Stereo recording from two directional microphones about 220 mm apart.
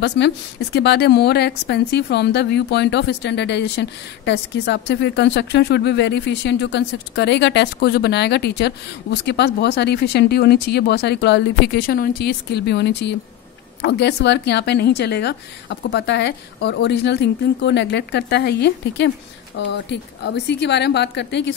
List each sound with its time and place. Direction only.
0.0 s a woman's voice: 50° left (ahead or behind)